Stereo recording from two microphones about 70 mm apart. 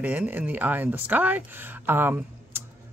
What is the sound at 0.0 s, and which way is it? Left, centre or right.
Speech, right.